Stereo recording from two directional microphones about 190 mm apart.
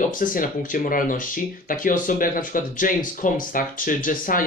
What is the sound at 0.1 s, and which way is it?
Speech, 45° left (ahead or behind).